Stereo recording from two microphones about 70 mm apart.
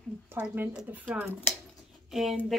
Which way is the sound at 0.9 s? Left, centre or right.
Right.